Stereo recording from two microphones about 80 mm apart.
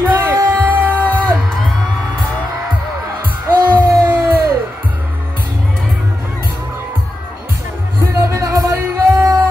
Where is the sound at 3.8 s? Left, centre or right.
Right.